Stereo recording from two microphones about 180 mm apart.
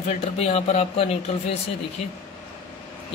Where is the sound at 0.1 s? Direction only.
35° left (ahead or behind).